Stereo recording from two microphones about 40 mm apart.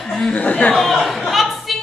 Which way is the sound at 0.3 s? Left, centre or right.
Left.